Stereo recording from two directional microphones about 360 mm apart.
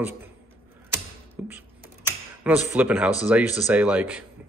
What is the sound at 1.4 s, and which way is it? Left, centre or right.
Computer keyboard, centre.